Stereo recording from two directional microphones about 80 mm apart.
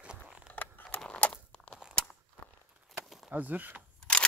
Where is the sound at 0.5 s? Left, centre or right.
Left.